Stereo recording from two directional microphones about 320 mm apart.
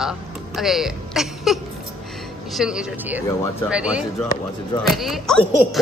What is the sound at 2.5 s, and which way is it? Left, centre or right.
A woman's voice, centre.